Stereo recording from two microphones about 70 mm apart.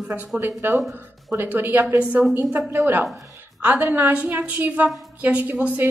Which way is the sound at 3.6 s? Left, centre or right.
Right.